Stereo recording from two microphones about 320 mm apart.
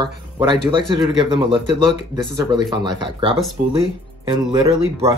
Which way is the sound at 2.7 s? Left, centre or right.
Centre.